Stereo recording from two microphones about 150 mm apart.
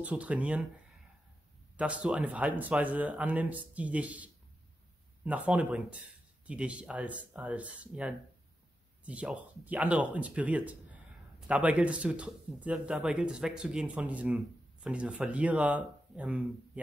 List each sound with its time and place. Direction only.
0.0 s speech: 10° right (ahead or behind)
1.8 s speech: 10° right (ahead or behind)